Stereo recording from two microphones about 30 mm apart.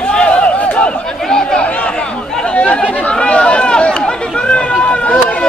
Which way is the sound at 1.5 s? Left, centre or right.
Left.